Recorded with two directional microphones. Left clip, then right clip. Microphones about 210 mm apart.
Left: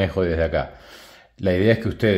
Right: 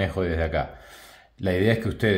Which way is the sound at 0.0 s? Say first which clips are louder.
Left 5 dB; 35° left (ahead or behind).